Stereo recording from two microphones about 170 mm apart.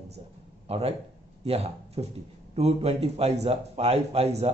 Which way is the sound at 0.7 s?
35° right (ahead or behind).